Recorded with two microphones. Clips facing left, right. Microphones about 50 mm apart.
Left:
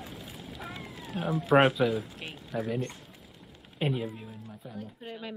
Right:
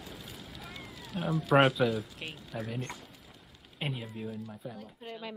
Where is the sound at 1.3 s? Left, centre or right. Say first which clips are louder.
Left 3 dB; left.